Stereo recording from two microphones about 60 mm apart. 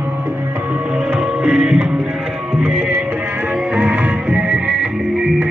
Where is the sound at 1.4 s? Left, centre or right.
Centre.